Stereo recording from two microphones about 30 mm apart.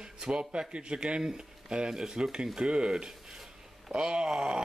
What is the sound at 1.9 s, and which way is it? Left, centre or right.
A man's voice, centre.